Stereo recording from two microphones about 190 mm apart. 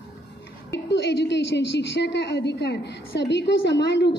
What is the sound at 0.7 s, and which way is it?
A woman's voice, 60° left (ahead or behind).